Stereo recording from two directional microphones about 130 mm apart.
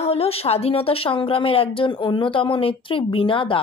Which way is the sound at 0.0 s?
50° left (ahead or behind).